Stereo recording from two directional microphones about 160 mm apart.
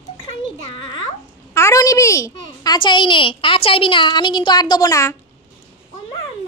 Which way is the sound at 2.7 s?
30° left (ahead or behind).